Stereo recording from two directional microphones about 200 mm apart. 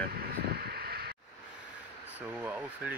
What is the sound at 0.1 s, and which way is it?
Vehicle, 50° right (ahead or behind).